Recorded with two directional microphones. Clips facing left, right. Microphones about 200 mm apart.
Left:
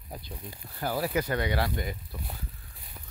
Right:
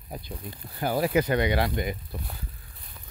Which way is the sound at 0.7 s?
20° right (ahead or behind).